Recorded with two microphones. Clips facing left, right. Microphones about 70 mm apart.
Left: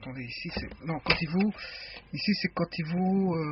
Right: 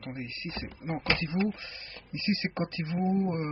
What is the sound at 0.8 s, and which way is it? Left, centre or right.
Speech, left.